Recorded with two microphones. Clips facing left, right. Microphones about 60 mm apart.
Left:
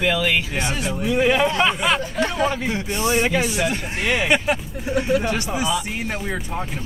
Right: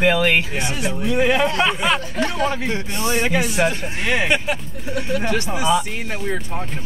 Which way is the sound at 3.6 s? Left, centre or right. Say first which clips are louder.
Right 7 dB; right.